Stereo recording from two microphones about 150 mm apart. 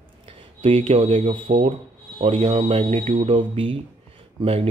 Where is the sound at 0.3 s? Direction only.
40° right (ahead or behind).